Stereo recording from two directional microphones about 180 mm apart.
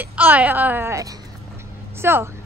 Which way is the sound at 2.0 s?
15° right (ahead or behind).